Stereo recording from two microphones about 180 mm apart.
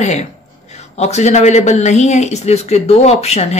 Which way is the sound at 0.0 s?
40° left (ahead or behind).